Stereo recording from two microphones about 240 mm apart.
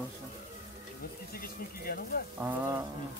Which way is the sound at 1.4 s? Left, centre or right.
Left.